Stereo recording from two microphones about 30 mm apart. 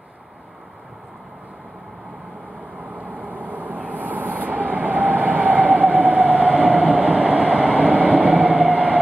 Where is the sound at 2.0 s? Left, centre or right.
Right.